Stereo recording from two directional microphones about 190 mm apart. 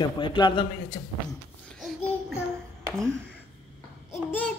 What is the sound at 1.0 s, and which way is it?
Speech, 40° left (ahead or behind).